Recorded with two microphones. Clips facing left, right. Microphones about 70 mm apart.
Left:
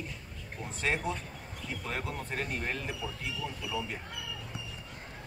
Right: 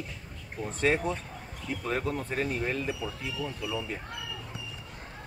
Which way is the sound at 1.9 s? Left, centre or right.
Right.